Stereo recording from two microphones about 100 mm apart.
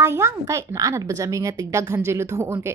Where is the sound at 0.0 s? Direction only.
25° right (ahead or behind).